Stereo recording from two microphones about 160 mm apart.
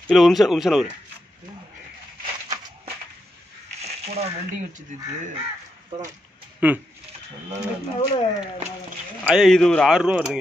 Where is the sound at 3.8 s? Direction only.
40° right (ahead or behind).